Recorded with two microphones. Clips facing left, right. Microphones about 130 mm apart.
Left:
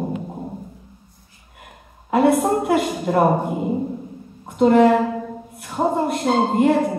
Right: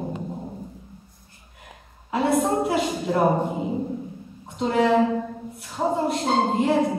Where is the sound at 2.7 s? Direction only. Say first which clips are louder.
Left 4 dB; 55° left (ahead or behind).